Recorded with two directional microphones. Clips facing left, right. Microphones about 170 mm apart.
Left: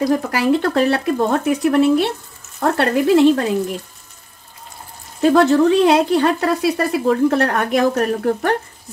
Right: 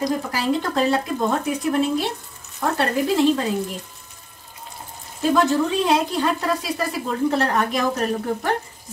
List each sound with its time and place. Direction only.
0.0 s speech: 65° left (ahead or behind)
5.2 s speech: 65° left (ahead or behind)